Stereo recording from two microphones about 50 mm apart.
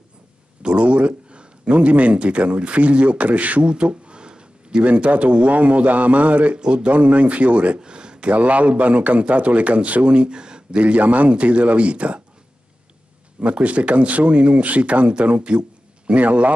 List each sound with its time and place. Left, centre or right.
0.6 s speech: right
13.4 s speech: right